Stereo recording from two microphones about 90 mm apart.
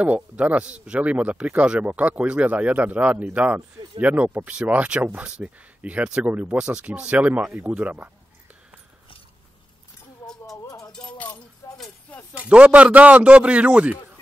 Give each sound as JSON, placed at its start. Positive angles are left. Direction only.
{"t": 0.0, "sound": "speech", "side_deg": -15}
{"t": 10.2, "sound": "music", "side_deg": 5}
{"t": 10.6, "sound": "a sound", "side_deg": 40}
{"t": 12.4, "sound": "speech", "side_deg": -15}